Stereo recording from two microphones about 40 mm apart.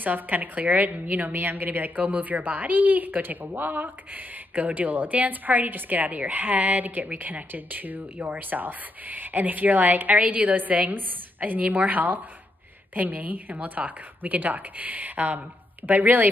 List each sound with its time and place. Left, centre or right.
0.0 s speech: right
1.3 s speech: right
2.0 s speech: right
10.1 s a woman's voice: right